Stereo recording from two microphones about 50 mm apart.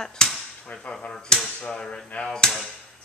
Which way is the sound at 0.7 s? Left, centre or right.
Left.